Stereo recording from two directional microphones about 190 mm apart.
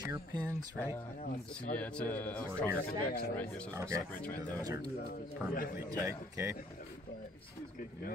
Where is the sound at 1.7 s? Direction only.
5° left (ahead or behind).